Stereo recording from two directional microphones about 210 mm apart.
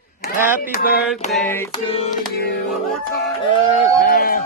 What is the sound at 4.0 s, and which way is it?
Music, 45° left (ahead or behind).